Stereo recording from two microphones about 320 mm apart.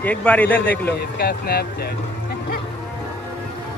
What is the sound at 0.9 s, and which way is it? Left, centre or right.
Speech, left.